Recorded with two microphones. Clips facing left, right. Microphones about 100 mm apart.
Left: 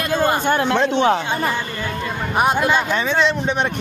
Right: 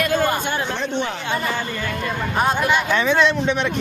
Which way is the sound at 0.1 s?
30° left (ahead or behind).